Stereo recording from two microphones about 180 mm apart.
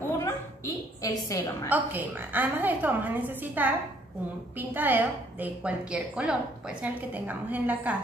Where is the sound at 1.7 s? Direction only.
10° right (ahead or behind).